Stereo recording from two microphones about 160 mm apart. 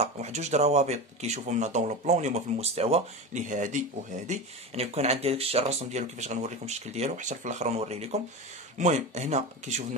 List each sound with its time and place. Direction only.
0.0 s speech: 45° right (ahead or behind)